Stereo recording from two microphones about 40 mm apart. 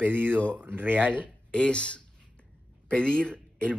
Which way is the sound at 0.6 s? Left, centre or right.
Right.